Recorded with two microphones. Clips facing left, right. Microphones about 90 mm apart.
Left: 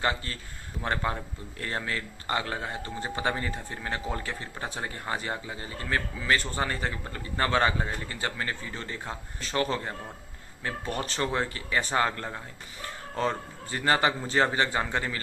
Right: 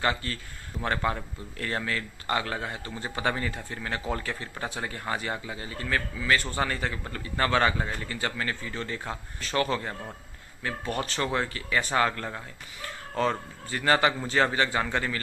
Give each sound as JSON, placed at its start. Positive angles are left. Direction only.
{"t": 0.0, "sound": "a man's voice", "side_deg": 25}
{"t": 11.1, "sound": "a man's voice", "side_deg": 25}